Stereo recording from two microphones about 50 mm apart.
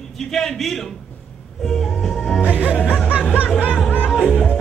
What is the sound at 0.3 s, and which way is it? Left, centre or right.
Speech, centre.